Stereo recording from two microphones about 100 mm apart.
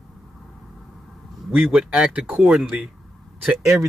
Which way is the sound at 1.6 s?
5° right (ahead or behind).